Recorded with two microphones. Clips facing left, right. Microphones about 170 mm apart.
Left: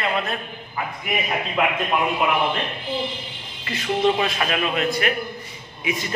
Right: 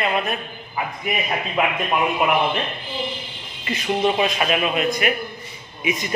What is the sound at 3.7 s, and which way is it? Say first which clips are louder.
A man's voice: even; 20° right (ahead or behind).